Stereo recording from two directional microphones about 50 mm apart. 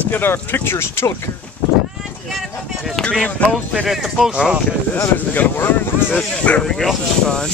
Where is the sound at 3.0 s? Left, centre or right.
Centre.